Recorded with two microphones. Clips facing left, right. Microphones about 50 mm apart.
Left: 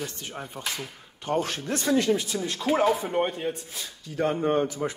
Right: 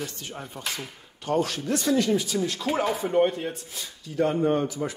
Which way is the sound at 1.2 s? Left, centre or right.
Left.